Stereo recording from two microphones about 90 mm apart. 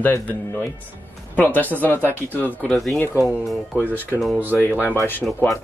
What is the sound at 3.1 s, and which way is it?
Speech, 35° left (ahead or behind).